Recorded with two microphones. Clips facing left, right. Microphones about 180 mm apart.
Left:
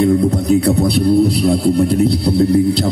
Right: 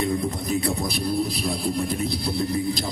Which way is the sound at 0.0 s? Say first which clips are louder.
Left 12 dB; 75° left (ahead or behind).